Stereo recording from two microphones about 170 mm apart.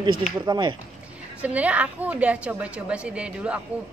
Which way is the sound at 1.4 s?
10° right (ahead or behind).